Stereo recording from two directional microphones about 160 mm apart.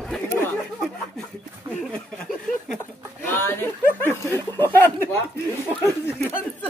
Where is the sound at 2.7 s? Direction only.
10° left (ahead or behind).